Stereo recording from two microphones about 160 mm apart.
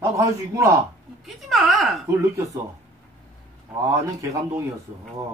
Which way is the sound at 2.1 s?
20° right (ahead or behind).